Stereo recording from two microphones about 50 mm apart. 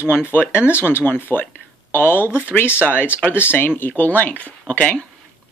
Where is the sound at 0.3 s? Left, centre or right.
Left.